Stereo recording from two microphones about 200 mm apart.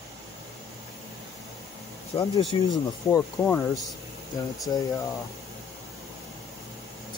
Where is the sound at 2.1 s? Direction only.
30° left (ahead or behind).